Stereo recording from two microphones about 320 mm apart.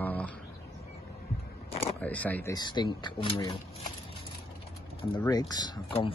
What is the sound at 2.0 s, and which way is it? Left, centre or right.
Speech, centre.